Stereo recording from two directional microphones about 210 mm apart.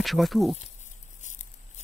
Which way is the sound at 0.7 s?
35° left (ahead or behind).